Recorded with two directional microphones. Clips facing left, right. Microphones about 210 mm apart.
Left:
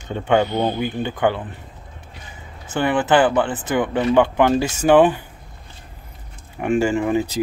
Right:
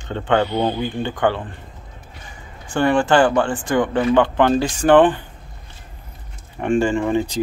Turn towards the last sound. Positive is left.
turn(degrees=5)  # may be behind; listen again after turning